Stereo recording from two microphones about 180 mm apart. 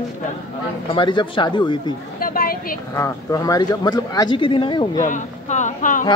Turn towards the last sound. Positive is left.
turn(degrees=45)  # may be behind; listen again after turning